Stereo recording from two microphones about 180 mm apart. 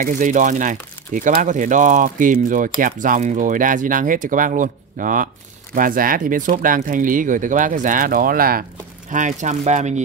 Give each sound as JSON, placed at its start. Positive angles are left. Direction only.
{"t": 0.0, "sound": "speech", "side_deg": -45}
{"t": 9.1, "sound": "speech", "side_deg": -45}